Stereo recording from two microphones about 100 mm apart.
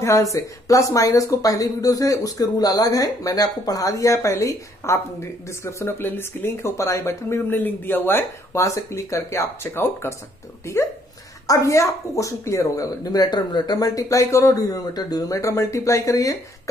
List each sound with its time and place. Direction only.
0.0 s speech: 30° left (ahead or behind)
11.4 s speech: 35° left (ahead or behind)